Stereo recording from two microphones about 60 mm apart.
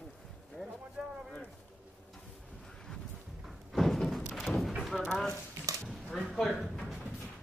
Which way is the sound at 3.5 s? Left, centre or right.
Centre.